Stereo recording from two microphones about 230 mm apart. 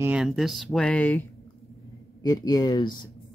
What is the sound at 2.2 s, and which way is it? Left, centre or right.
Speech, centre.